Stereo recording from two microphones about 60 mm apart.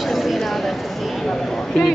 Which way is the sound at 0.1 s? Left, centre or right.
Centre.